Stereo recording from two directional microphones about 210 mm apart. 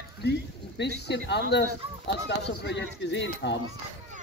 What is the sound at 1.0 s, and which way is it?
A man's voice, 55° left (ahead or behind).